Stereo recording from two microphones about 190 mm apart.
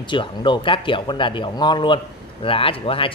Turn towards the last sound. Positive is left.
turn(degrees=30)  # may be behind; listen again after turning